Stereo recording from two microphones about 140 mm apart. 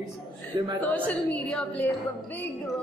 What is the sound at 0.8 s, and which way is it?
A woman's voice, 10° left (ahead or behind).